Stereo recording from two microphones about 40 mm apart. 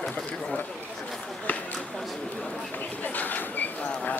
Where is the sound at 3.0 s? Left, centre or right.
Left.